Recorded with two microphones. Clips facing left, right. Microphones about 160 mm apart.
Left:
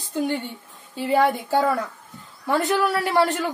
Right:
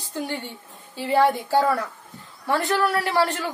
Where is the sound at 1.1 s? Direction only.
Centre (ahead or behind).